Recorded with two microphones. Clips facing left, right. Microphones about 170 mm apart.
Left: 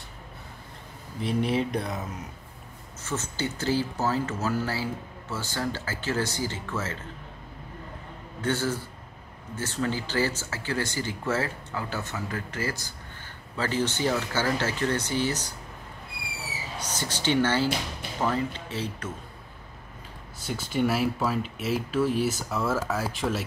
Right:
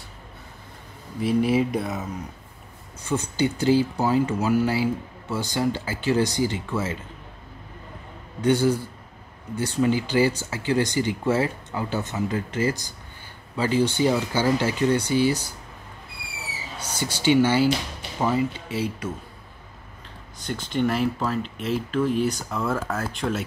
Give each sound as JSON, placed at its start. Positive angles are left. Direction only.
{"t": 1.2, "sound": "speech", "side_deg": -5}
{"t": 3.0, "sound": "speech", "side_deg": -15}
{"t": 8.4, "sound": "speech", "side_deg": -15}
{"t": 16.7, "sound": "speech", "side_deg": -10}
{"t": 20.3, "sound": "speech", "side_deg": 5}